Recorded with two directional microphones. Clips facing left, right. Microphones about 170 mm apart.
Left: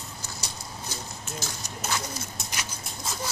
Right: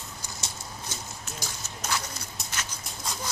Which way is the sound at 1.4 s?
15° right (ahead or behind).